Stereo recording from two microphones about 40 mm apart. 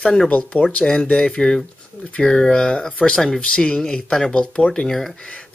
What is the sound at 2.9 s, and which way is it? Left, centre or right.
Speech, left.